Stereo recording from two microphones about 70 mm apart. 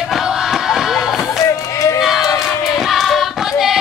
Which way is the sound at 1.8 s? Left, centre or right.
Left.